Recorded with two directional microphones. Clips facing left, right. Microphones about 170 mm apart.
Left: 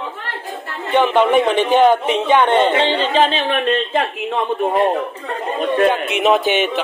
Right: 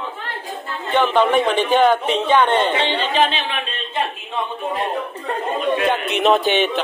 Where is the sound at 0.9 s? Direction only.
15° left (ahead or behind).